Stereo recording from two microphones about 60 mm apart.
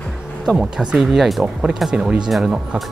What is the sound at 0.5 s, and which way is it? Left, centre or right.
Speech, centre.